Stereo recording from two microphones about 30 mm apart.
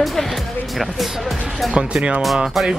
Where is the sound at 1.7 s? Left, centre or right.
Right.